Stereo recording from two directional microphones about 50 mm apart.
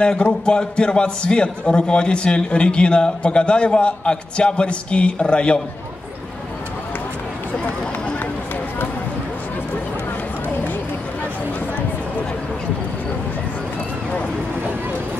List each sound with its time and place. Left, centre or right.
0.0 s a man's voice: centre